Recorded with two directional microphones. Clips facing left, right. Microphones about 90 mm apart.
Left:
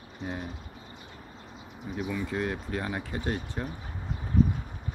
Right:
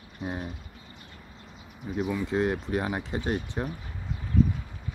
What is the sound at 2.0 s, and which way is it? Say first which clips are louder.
Speech: right 4 dB; 20° right (ahead or behind).